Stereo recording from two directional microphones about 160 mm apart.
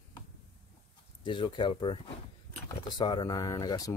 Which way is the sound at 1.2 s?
30° left (ahead or behind).